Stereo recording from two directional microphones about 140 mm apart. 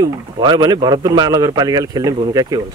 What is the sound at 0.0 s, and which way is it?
A man's voice, 30° right (ahead or behind).